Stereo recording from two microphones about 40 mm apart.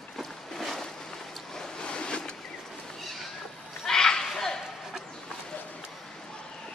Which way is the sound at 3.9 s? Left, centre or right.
Centre.